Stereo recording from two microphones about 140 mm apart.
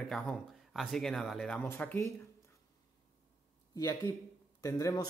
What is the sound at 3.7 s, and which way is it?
Speech, 25° left (ahead or behind).